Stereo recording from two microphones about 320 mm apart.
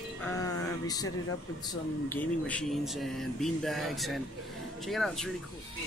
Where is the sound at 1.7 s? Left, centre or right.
Centre.